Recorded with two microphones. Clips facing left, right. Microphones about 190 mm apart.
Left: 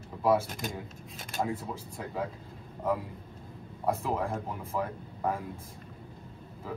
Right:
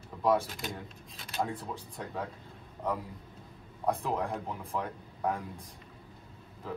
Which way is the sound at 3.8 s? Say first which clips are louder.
Left 1 dB; centre (ahead or behind).